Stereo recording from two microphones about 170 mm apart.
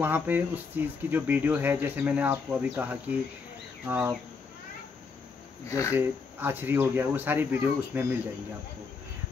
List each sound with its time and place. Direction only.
0.0 s speech: 10° right (ahead or behind)
5.7 s speech: 15° left (ahead or behind)
5.9 s speech: 10° right (ahead or behind)